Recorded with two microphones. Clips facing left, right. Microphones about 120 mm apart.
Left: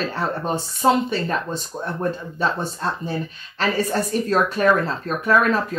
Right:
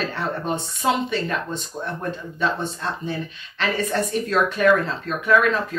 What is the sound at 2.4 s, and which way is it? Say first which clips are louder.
Speech: left 1 dB; 35° left (ahead or behind).